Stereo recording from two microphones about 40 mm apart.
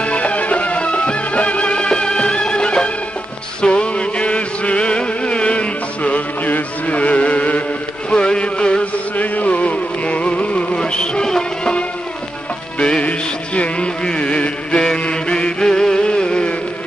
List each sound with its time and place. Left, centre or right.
0.0 s music: left
8.1 s music: left
9.1 s music: left
10.8 s music: left
12.7 s music: left